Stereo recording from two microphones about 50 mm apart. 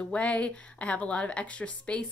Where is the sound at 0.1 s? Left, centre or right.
Left.